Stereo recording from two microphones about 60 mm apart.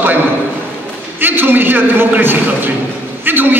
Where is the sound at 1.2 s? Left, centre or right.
Right.